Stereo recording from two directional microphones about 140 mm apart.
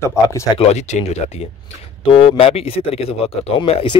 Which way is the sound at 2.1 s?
40° left (ahead or behind).